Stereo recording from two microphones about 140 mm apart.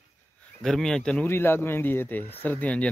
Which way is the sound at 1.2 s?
15° left (ahead or behind).